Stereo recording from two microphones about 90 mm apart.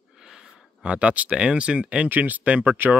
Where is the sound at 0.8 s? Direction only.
15° right (ahead or behind).